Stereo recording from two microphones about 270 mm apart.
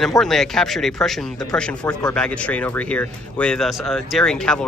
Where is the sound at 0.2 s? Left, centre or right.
Centre.